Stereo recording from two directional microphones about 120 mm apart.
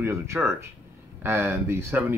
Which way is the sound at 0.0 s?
25° right (ahead or behind).